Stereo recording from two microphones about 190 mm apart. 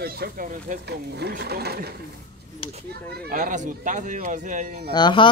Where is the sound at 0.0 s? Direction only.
50° right (ahead or behind).